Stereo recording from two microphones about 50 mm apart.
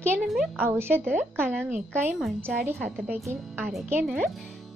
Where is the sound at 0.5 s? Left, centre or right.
Right.